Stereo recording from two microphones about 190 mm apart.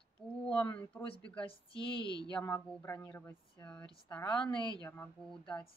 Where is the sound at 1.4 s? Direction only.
30° left (ahead or behind).